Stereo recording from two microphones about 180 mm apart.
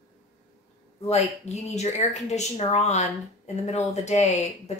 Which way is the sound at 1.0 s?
35° left (ahead or behind).